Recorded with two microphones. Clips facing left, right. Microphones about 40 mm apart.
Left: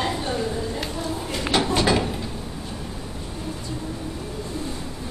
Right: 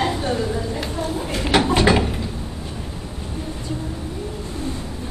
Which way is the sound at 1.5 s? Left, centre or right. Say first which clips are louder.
Right 4 dB; right.